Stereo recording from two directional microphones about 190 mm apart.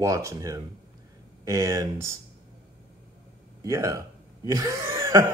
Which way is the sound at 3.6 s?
15° right (ahead or behind).